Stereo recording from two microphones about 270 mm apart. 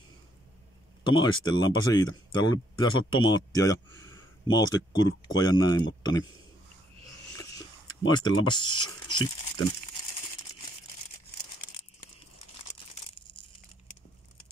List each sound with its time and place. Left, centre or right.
1.0 s speech: centre
7.3 s a sound: centre
8.1 s speech: centre